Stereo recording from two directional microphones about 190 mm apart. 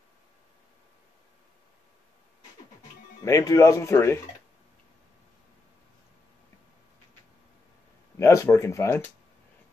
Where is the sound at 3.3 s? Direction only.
15° left (ahead or behind).